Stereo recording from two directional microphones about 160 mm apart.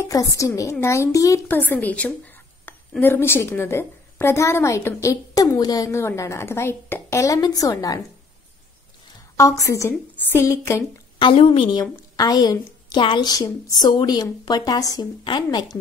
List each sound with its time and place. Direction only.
0.0 s a woman's voice: 20° left (ahead or behind)
9.4 s a child's voice: 20° left (ahead or behind)
11.1 s a woman's voice: 30° left (ahead or behind)